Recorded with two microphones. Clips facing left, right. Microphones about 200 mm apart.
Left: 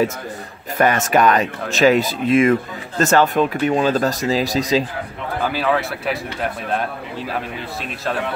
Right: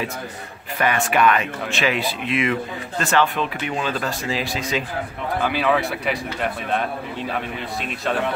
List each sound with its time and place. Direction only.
0.7 s speech: 40° left (ahead or behind)
5.4 s speech: centre (ahead or behind)